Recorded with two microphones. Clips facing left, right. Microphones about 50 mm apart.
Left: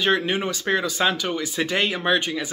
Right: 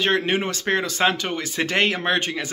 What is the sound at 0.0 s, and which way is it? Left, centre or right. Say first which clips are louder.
Speech: right 1 dB; right.